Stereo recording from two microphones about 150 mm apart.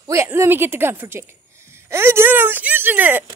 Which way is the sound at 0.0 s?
20° right (ahead or behind).